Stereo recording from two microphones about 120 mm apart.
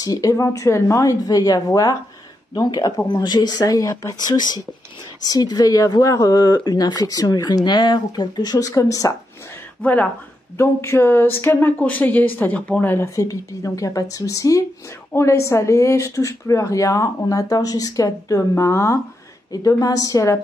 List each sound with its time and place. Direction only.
0.0 s speech: 30° left (ahead or behind)
9.8 s a woman's voice: 15° left (ahead or behind); by 20.3 s 30° left (ahead or behind)